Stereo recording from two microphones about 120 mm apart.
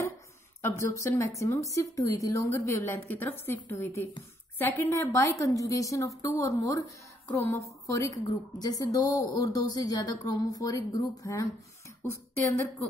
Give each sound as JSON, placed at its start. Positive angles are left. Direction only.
{"t": 0.6, "sound": "a woman's voice", "side_deg": 25}